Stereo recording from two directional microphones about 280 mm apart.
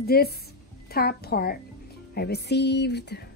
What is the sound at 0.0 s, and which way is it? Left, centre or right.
A woman's voice, left.